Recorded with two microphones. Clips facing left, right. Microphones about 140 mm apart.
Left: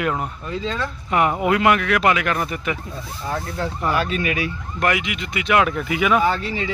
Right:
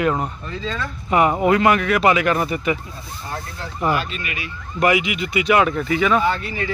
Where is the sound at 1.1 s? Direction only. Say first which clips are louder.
Right 3 dB; centre (ahead or behind).